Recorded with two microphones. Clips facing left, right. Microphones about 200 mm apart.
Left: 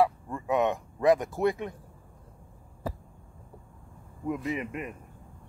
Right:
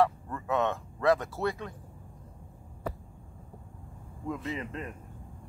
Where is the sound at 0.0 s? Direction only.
15° left (ahead or behind).